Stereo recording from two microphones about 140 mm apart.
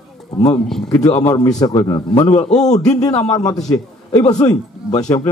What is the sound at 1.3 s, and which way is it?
A man's voice, 25° left (ahead or behind).